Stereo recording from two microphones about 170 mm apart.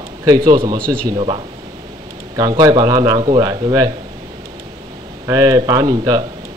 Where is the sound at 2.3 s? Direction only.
25° right (ahead or behind).